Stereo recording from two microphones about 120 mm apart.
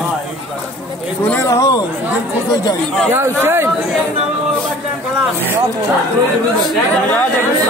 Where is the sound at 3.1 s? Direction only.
20° right (ahead or behind).